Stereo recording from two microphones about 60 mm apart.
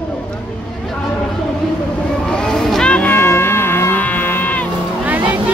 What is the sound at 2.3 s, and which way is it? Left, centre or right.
Vehicle, centre.